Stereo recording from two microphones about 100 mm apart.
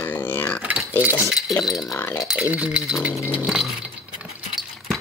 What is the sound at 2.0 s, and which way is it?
Speech, 20° left (ahead or behind).